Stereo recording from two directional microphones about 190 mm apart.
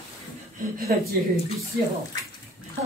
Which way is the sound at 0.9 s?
55° right (ahead or behind).